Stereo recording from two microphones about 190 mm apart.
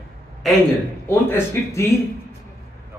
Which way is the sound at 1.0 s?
15° left (ahead or behind).